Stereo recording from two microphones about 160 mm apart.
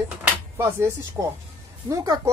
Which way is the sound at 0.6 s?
15° right (ahead or behind).